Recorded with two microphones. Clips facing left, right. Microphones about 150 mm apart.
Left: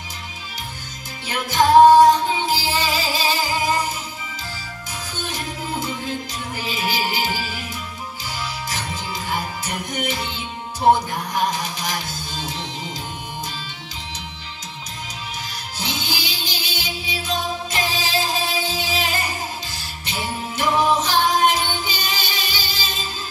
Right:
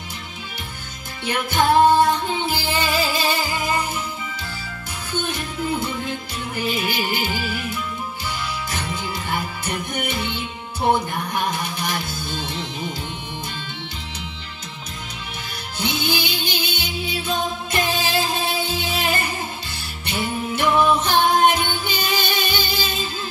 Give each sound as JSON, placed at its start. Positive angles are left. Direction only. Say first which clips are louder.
{"t": 1.2, "sound": "music", "louder": "left 1 dB", "side_deg": -55}
{"t": 5.1, "sound": "music", "louder": "right 5 dB", "side_deg": -55}
{"t": 8.3, "sound": "music", "louder": "left 1 dB", "side_deg": -55}
{"t": 11.4, "sound": "music", "louder": "left 1 dB", "side_deg": -55}
{"t": 15.8, "sound": "music", "louder": "right 5 dB", "side_deg": -60}